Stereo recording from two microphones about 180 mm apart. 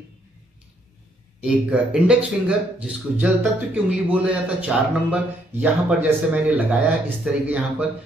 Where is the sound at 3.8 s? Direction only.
10° right (ahead or behind).